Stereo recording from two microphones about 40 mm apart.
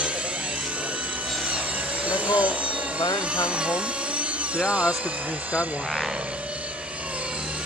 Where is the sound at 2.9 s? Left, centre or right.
Right.